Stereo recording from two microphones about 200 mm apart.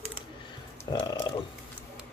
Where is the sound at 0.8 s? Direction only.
20° left (ahead or behind).